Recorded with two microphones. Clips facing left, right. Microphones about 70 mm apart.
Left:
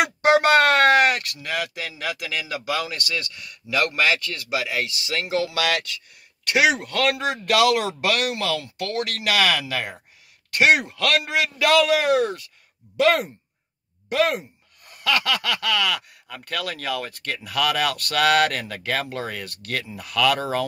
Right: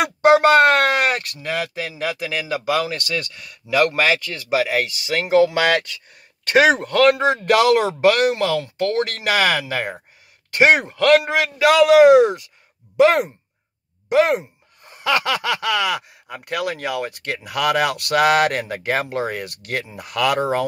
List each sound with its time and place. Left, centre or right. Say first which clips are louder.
1.1 s speech: right 3 dB; right
11.5 s speech: right 7 dB; centre